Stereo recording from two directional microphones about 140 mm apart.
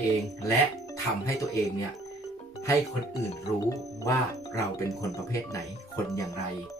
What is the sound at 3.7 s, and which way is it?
Speech, 25° left (ahead or behind).